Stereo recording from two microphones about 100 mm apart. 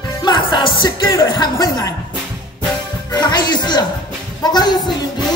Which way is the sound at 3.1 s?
45° left (ahead or behind).